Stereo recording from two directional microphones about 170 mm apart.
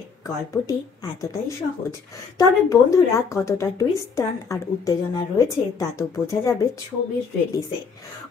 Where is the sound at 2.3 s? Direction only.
20° left (ahead or behind).